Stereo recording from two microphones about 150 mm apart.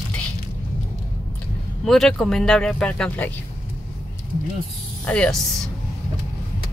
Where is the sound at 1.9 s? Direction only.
5° left (ahead or behind).